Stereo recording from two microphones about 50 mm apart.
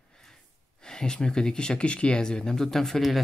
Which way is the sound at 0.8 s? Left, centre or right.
Centre.